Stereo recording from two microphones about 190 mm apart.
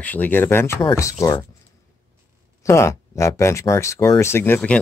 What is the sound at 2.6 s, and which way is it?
Speech, 15° left (ahead or behind).